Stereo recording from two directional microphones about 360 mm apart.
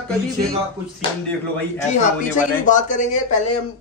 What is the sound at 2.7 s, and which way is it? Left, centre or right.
Speech, left.